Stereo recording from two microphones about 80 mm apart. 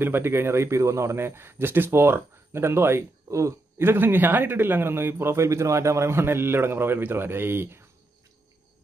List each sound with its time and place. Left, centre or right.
0.0 s speech: right